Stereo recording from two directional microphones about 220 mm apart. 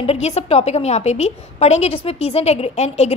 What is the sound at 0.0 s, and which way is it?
A woman's voice, 25° left (ahead or behind).